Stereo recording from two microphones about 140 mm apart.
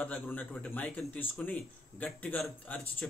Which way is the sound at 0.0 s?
10° left (ahead or behind).